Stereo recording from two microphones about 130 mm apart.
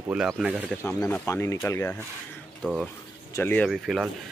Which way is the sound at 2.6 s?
5° left (ahead or behind).